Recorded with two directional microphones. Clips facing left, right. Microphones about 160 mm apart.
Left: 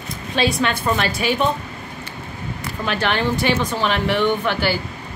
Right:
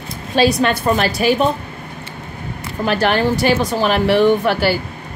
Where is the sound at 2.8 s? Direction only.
40° right (ahead or behind).